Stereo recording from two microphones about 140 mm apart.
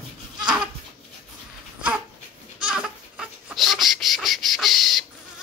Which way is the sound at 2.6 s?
5° right (ahead or behind).